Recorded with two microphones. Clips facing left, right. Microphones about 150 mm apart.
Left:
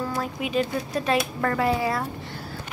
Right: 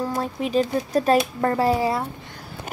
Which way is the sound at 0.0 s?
30° right (ahead or behind).